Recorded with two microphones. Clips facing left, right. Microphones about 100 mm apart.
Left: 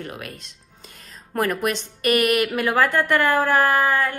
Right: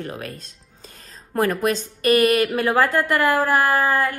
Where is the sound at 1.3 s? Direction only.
30° right (ahead or behind).